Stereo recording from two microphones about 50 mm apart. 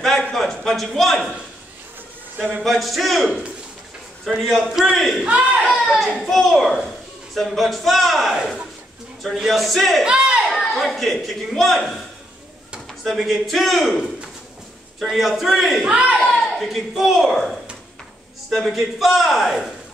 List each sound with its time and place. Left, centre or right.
0.0 s a sound: centre
2.5 s a man's voice: centre
4.3 s a man's voice: centre
5.2 s speech: right
5.7 s a sound: centre
6.1 s a man's voice: centre
6.5 s a child's voice: centre
10.0 s a sound: centre
10.5 s speech: centre
13.0 s a man's voice: centre
15.0 s a man's voice: centre
15.9 s speech: right
16.3 s a sound: centre
16.9 s a man's voice: centre